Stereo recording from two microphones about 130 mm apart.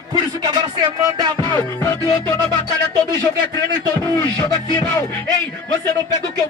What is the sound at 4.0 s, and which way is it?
Speech, 35° left (ahead or behind).